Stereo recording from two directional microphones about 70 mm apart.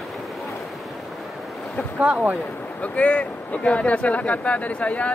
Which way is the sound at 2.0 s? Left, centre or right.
Centre.